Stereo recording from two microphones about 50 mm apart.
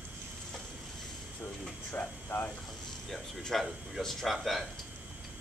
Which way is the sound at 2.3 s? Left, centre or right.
Left.